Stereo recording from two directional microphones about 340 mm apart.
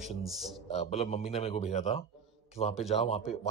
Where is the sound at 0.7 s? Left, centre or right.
Centre.